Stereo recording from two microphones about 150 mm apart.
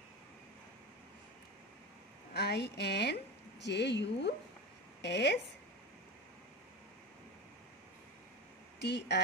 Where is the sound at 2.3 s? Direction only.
90° left.